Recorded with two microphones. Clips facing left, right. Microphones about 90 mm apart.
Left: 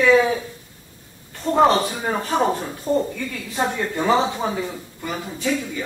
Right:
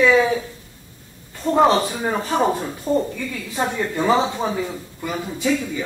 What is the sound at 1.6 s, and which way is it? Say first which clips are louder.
Speech: even; 15° right (ahead or behind).